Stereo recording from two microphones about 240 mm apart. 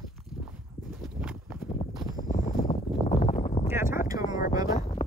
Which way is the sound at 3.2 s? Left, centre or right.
Left.